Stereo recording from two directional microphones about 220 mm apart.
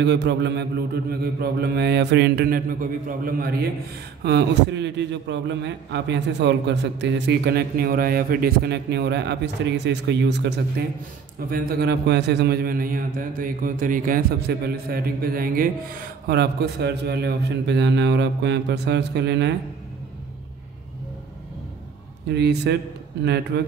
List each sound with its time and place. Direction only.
0.0 s a man's voice: 50° right (ahead or behind)
11.5 s a man's voice: 45° right (ahead or behind)
22.3 s a man's voice: 50° right (ahead or behind)